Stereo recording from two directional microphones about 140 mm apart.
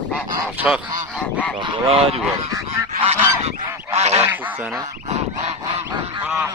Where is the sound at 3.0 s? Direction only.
45° right (ahead or behind).